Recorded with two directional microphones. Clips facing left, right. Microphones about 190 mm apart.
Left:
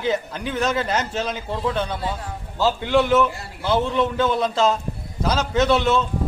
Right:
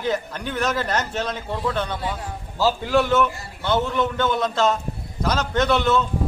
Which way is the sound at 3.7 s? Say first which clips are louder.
Left 2 dB; 30° left (ahead or behind).